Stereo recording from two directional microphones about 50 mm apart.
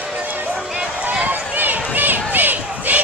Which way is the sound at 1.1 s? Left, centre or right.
Right.